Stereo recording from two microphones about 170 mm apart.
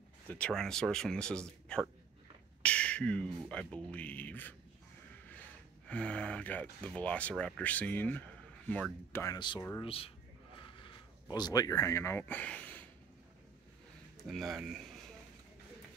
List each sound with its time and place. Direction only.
0.3 s speech: 5° left (ahead or behind)
5.9 s speech: 5° left (ahead or behind); by 9.7 s 25° left (ahead or behind)
9.8 s a sound: 35° left (ahead or behind); by 12.8 s 10° left (ahead or behind)
14.1 s speech: centre (ahead or behind)